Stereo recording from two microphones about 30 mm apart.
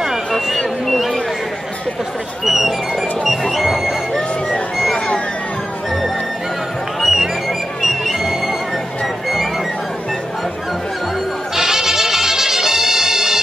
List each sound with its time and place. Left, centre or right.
2.4 s speech: centre
7.1 s music: centre
11.5 s music: centre